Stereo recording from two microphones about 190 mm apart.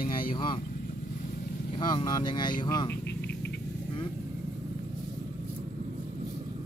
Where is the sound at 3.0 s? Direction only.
60° left (ahead or behind).